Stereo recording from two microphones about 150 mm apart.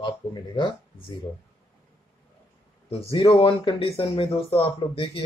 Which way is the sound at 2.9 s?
40° left (ahead or behind).